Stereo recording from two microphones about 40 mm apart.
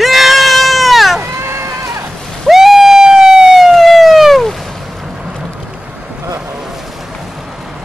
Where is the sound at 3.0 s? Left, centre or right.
Centre.